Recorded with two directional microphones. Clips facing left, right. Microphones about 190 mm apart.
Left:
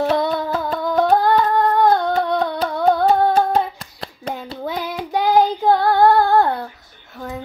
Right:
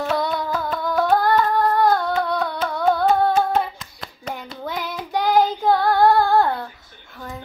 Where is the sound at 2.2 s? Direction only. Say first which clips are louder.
Left 4 dB; 20° left (ahead or behind).